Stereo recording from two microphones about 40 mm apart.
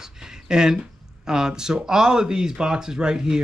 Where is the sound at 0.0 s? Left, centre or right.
Centre.